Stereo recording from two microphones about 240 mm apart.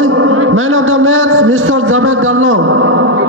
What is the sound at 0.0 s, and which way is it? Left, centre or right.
A man's voice, right.